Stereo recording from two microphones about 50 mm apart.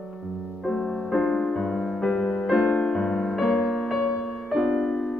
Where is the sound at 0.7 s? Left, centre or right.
Centre.